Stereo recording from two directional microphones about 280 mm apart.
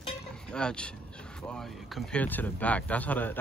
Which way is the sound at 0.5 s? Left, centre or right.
Centre.